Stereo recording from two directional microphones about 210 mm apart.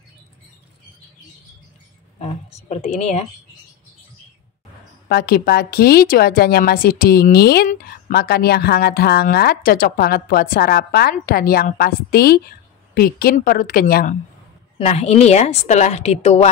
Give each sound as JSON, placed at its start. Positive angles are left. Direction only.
{"t": 2.1, "sound": "a woman's voice", "side_deg": 30}
{"t": 5.0, "sound": "a woman's voice", "side_deg": 45}
{"t": 14.8, "sound": "a woman's voice", "side_deg": 30}